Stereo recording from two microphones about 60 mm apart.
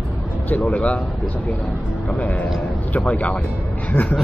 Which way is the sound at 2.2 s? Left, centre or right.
Left.